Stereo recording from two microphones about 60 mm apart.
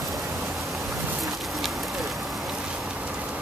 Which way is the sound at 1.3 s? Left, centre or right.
Centre.